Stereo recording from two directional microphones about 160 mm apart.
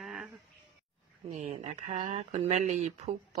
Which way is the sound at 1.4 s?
45° right (ahead or behind).